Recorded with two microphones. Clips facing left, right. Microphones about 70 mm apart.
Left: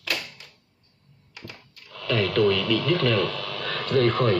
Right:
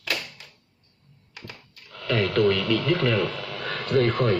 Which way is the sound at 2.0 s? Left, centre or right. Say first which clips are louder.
Even; centre.